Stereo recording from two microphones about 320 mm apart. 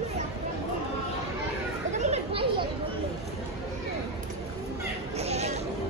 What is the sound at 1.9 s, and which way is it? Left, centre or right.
Children playing, right.